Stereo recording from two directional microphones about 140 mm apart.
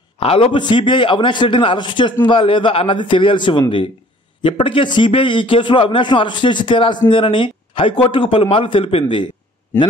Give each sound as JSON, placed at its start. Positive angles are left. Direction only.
{"t": 0.2, "sound": "a man's voice", "side_deg": 40}